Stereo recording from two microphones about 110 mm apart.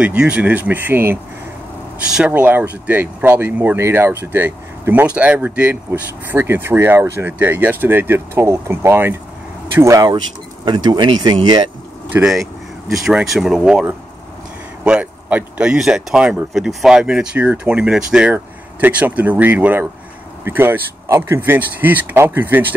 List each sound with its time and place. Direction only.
0.0 s speech: 10° right (ahead or behind)
2.0 s speech: 10° right (ahead or behind); by 11.7 s 45° right (ahead or behind)
12.1 s speech: 25° right (ahead or behind)
12.9 s speech: 5° right (ahead or behind)
14.9 s speech: 10° right (ahead or behind)